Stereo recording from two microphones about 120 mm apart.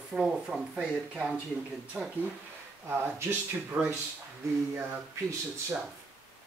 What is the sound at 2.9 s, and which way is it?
Speech, 20° right (ahead or behind).